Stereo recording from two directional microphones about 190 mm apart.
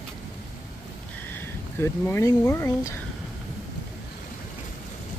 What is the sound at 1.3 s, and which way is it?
Speech, 10° left (ahead or behind).